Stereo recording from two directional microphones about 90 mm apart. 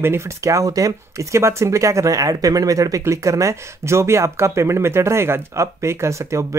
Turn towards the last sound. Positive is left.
turn(degrees=-35)  # may be behind; listen again after turning